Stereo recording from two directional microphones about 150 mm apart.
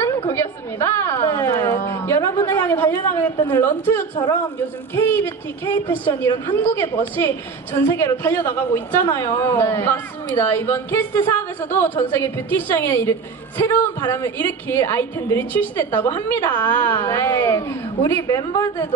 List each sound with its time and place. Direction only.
0.3 s a woman's voice: 15° left (ahead or behind)